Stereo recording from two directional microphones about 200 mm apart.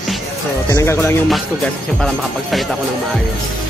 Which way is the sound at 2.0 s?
Centre (ahead or behind).